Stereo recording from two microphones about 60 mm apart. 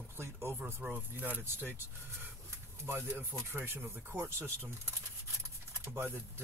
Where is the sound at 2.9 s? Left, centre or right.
Right.